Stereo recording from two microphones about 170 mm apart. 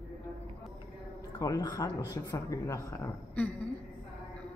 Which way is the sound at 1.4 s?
20° left (ahead or behind).